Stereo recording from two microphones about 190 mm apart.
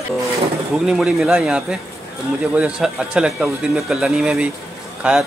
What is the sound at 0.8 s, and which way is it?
Speech, 5° right (ahead or behind).